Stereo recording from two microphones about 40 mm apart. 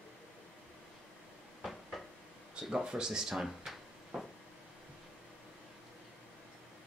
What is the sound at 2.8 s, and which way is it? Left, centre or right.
Speech, centre.